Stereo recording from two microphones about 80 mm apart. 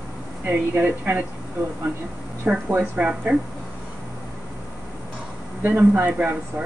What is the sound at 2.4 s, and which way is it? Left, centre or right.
Speech, centre.